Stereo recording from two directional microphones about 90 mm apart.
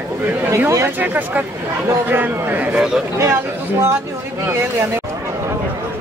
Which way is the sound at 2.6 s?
10° right (ahead or behind).